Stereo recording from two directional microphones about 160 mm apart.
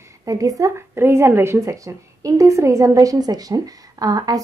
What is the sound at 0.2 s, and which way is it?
A woman's voice, 20° right (ahead or behind).